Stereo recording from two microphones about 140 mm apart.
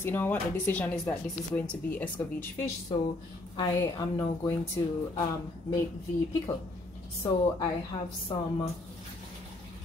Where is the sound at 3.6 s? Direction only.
25° left (ahead or behind).